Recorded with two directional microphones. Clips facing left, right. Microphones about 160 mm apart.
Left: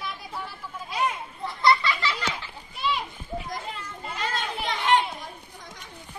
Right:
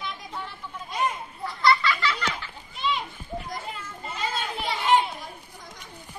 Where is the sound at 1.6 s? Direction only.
20° left (ahead or behind).